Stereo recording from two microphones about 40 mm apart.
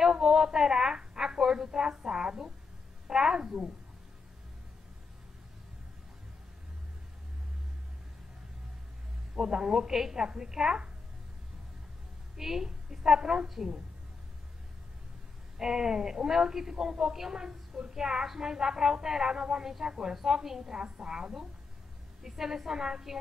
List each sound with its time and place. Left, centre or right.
0.0 s a sound: centre
3.1 s a woman's voice: centre
9.3 s a woman's voice: centre
12.4 s a woman's voice: centre
15.5 s a woman's voice: centre